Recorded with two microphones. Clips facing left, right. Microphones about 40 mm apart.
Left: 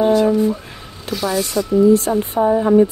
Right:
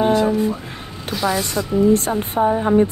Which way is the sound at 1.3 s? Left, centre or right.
Right.